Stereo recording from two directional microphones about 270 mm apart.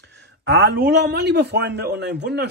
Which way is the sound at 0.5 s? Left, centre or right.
Right.